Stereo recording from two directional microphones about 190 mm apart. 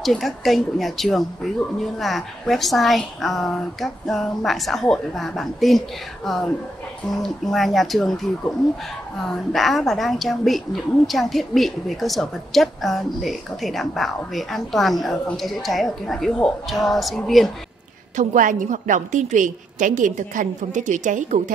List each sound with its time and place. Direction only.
0.0 s a woman's voice: centre (ahead or behind)
9.2 s a woman's voice: centre (ahead or behind)
18.1 s a woman's voice: 45° right (ahead or behind)